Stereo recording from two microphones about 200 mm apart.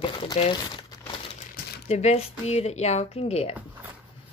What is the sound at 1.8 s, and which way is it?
Speech, 35° left (ahead or behind).